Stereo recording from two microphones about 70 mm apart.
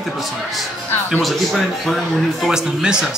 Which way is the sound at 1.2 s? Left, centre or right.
Centre.